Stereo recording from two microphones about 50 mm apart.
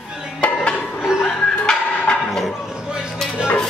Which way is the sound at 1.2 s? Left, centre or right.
Centre.